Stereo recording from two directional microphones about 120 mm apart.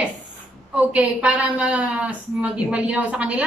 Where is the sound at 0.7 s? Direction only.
10° right (ahead or behind).